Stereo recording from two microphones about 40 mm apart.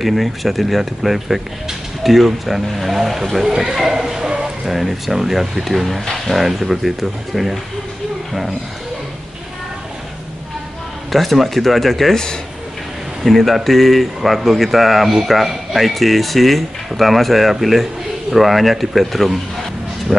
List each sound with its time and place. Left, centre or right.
0.0 s speech: centre
11.1 s speech: centre
13.2 s speech: centre
20.1 s speech: centre